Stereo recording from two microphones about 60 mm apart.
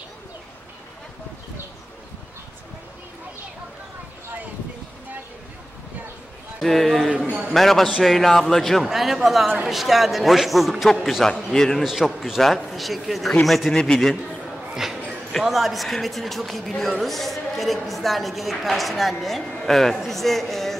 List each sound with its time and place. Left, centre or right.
6.6 s a woman's voice: centre
7.2 s a man's voice: right
7.5 s a woman's voice: centre
11.8 s a woman's voice: centre
14.8 s a sound: centre
15.4 s a woman's voice: centre